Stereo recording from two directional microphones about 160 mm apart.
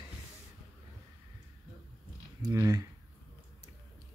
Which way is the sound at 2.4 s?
20° right (ahead or behind).